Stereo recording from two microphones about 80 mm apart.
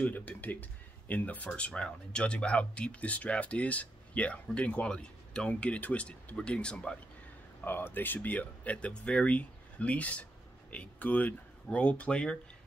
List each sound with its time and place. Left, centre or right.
0.0 s speech: centre
7.6 s speech: left